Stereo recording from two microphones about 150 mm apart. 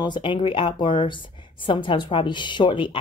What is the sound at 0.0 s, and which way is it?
A woman's voice, 30° left (ahead or behind).